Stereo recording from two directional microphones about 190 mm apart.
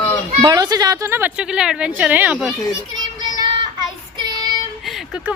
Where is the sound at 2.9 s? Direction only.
20° right (ahead or behind).